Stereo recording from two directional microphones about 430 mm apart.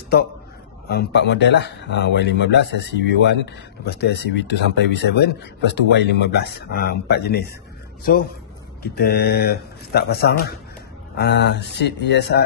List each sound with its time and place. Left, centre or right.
0.8 s speech: left
8.8 s speech: left